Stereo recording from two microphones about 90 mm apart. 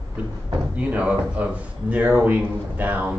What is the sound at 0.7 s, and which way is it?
Speech, 15° right (ahead or behind).